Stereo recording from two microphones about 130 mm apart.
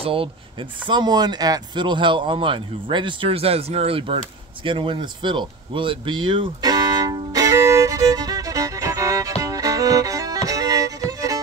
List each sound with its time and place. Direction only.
0.0 s speech: 45° right (ahead or behind)
0.8 s speech: 35° right (ahead or behind)
4.6 s a sound: 40° right (ahead or behind)
9.4 s music: 25° right (ahead or behind)